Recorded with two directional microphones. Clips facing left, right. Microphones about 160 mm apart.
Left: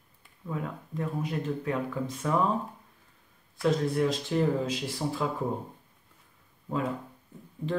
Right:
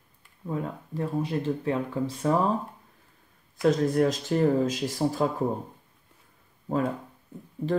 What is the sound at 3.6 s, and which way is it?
Speech, 45° right (ahead or behind).